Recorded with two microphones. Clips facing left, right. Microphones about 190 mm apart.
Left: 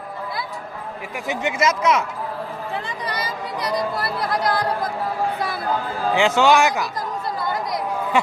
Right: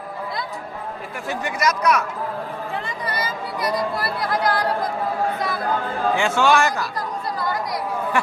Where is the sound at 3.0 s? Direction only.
20° left (ahead or behind).